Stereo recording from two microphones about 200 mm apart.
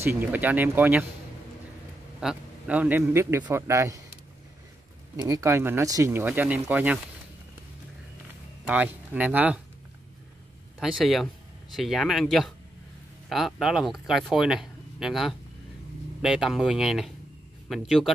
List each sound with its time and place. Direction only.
0.0 s a man's voice: 10° right (ahead or behind)
2.1 s a man's voice: 5° right (ahead or behind)
5.1 s a man's voice: 15° right (ahead or behind)
8.6 s a man's voice: 5° right (ahead or behind)
10.8 s speech: centre (ahead or behind)